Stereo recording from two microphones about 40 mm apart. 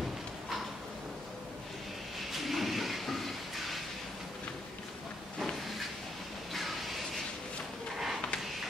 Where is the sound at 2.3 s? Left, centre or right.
Centre.